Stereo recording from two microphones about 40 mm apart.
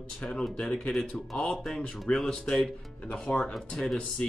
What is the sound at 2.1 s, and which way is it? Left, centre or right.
Speech, left.